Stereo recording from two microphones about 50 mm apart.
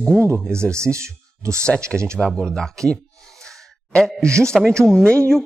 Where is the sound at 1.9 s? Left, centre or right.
Centre.